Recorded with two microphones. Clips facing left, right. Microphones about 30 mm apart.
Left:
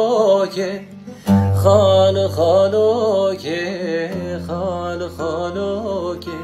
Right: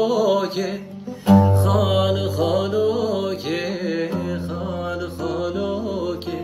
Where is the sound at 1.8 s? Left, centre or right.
Left.